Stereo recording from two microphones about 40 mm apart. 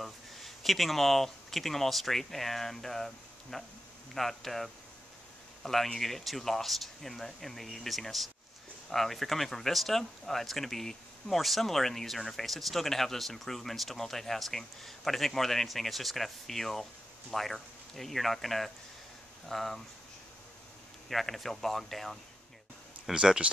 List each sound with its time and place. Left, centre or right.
0.0 s speech: centre
21.1 s speech: centre
23.1 s speech: right